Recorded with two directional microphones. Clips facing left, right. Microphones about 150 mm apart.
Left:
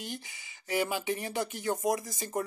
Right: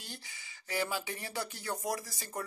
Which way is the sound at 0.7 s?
15° left (ahead or behind).